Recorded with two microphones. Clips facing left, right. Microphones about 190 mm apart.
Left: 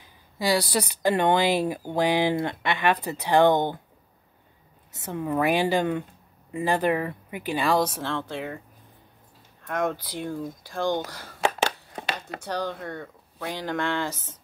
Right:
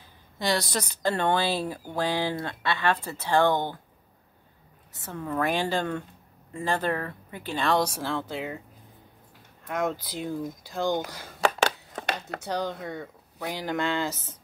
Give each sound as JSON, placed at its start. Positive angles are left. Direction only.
{"t": 0.0, "sound": "speech", "side_deg": 5}
{"t": 4.9, "sound": "speech", "side_deg": 20}
{"t": 9.7, "sound": "speech", "side_deg": -5}
{"t": 12.4, "sound": "speech", "side_deg": -15}